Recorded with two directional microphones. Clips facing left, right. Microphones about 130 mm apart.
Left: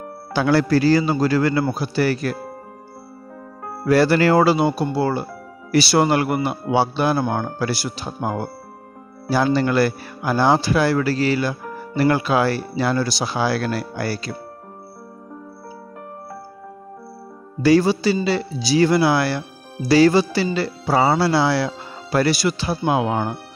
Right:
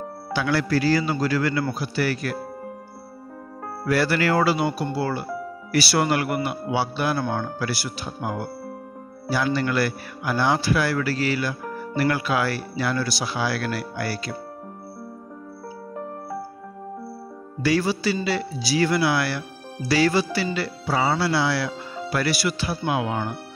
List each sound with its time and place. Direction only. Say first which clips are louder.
0.3 s speech: left 6 dB; 30° left (ahead or behind)
3.8 s speech: left 6 dB; 30° left (ahead or behind)
17.6 s speech: left 7 dB; 30° left (ahead or behind)